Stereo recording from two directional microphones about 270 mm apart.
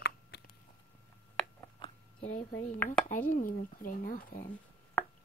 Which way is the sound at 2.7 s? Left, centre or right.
Centre.